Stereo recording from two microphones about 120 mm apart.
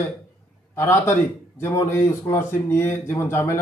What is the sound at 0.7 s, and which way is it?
A man's voice, 20° left (ahead or behind).